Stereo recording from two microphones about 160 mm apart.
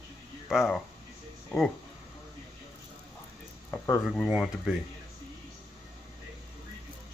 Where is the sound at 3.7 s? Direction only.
20° left (ahead or behind).